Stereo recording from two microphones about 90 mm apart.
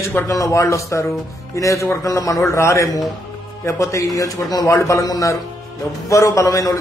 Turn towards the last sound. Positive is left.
turn(degrees=35)  # may be behind; listen again after turning